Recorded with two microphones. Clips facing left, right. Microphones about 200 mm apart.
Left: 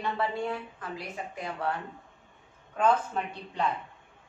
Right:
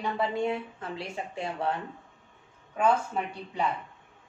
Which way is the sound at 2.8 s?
10° right (ahead or behind).